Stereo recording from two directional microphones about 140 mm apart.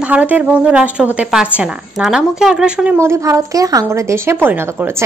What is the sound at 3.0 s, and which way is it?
A woman's voice, 20° right (ahead or behind).